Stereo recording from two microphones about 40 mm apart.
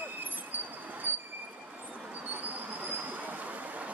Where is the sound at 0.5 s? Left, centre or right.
Right.